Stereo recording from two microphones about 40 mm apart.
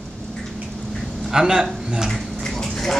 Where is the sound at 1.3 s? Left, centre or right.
Centre.